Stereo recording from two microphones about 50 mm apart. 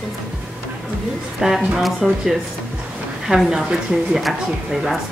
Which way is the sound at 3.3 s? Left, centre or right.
Centre.